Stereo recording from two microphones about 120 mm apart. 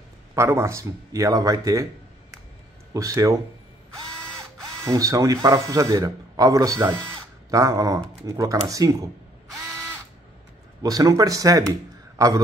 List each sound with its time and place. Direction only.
0.3 s speech: 20° right (ahead or behind)
2.9 s speech: 30° right (ahead or behind)
4.8 s speech: 30° right (ahead or behind)
10.8 s speech: 30° right (ahead or behind)